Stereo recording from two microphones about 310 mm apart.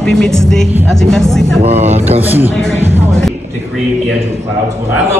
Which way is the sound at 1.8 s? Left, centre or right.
Right.